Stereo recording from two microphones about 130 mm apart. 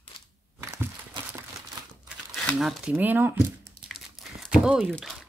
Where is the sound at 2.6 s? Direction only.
5° right (ahead or behind).